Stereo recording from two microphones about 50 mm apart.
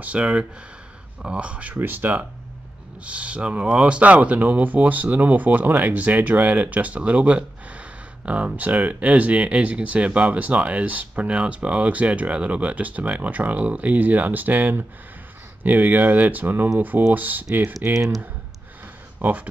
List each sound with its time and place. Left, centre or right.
0.0 s speech: right
1.8 s speech: right
3.0 s speech: right
19.1 s speech: right